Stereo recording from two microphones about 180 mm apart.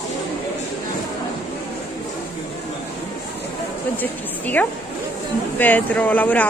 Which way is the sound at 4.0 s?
10° left (ahead or behind).